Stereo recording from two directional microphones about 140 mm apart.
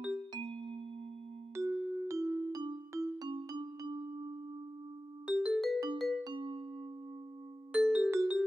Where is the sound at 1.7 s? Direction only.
15° right (ahead or behind).